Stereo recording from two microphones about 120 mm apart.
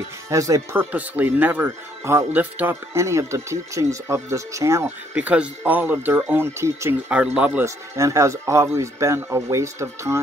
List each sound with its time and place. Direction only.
0.3 s speech: 25° right (ahead or behind)
0.7 s speech: 15° right (ahead or behind)
5.1 s speech: 10° right (ahead or behind)
7.1 s speech: 10° right (ahead or behind)
7.6 s speech: 25° right (ahead or behind)